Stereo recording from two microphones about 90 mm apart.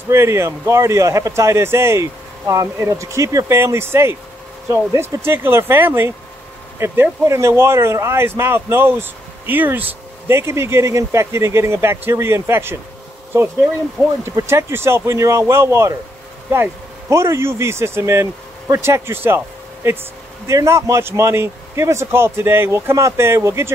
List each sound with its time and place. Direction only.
0.1 s speech: 30° right (ahead or behind)
3.5 s a man's voice: 25° right (ahead or behind)
14.2 s a man's voice: 30° right (ahead or behind)